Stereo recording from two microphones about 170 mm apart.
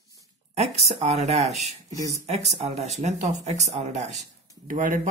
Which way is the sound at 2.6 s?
40° right (ahead or behind).